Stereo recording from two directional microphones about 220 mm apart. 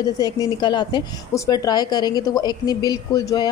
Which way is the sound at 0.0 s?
20° left (ahead or behind).